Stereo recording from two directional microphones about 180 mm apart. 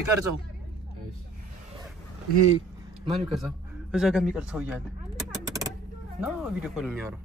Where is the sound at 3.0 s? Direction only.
Centre (ahead or behind).